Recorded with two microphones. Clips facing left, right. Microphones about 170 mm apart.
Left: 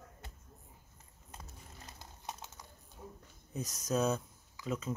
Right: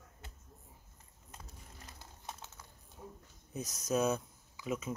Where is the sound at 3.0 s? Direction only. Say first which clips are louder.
Even; centre (ahead or behind).